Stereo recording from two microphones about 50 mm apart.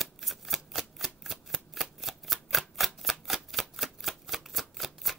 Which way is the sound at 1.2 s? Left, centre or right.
Centre.